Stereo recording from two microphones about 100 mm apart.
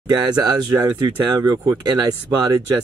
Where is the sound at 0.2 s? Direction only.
45° right (ahead or behind).